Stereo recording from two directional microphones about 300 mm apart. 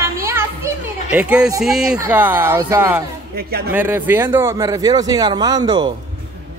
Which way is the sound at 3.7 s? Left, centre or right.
Centre.